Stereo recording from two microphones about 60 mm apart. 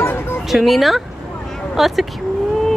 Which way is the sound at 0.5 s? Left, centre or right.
Centre.